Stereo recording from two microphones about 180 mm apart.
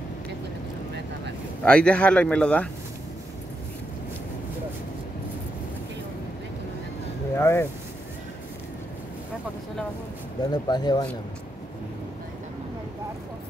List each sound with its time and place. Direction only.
1.6 s speech: 5° left (ahead or behind)
7.3 s speech: 15° left (ahead or behind)
10.4 s speech: 25° left (ahead or behind)